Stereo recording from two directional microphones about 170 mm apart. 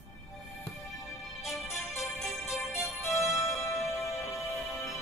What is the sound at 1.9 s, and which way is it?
Music, centre (ahead or behind).